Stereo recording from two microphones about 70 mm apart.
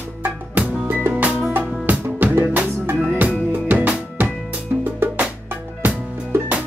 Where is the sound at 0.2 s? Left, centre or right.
Right.